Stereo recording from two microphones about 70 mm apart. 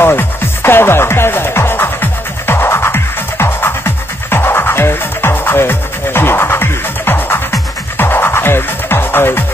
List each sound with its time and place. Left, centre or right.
0.0 s music: left